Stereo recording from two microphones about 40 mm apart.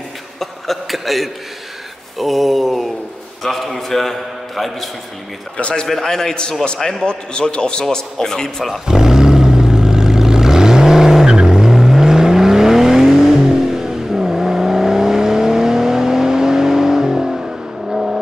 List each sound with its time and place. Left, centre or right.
0.4 s a sound: centre
2.1 s a man's voice: centre
5.6 s a man's voice: left
5.9 s a man's voice: centre
6.8 s a man's voice: centre
7.1 s a man's voice: left
8.8 s vehicle: centre